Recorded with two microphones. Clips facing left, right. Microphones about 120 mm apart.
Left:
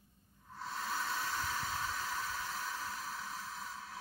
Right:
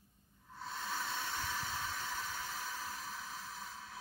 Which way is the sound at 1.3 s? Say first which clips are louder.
Left 2 dB; 30° left (ahead or behind).